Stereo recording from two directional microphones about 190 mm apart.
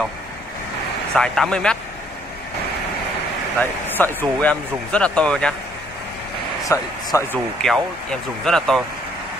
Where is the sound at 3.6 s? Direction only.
10° left (ahead or behind).